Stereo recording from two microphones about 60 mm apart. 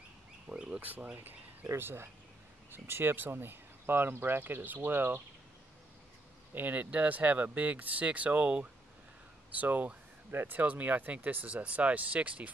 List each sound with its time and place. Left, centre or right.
0.5 s a sound: centre
0.7 s speech: right
1.7 s speech: right
6.5 s speech: right